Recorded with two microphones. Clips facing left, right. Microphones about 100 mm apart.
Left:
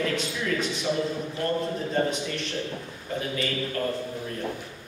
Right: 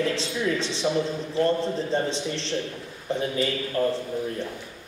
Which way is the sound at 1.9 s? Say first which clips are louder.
Even; 30° right (ahead or behind).